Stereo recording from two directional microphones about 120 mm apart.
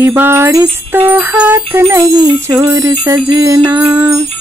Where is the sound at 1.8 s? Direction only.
25° right (ahead or behind).